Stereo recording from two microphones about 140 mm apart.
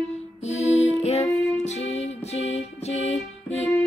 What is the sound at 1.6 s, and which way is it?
Music, 50° left (ahead or behind).